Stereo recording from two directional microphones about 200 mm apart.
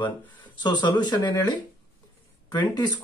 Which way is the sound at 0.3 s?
20° left (ahead or behind).